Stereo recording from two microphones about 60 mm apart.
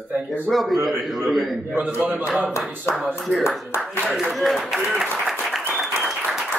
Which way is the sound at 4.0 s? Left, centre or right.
Centre.